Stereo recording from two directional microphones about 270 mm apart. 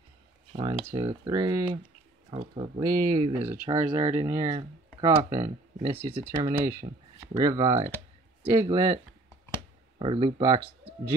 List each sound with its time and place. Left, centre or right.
0.5 s a sound: centre
0.8 s speech: centre
3.6 s speech: centre
9.9 s speech: right